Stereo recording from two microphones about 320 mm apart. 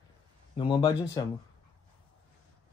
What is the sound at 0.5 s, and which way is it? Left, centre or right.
Speech, centre.